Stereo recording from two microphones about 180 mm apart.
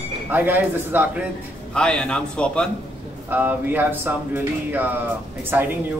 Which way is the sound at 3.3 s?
10° right (ahead or behind).